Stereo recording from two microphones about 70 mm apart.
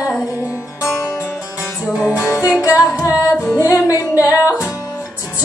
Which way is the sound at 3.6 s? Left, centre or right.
Left.